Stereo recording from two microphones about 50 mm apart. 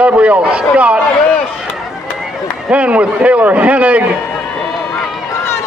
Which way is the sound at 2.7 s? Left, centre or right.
Right.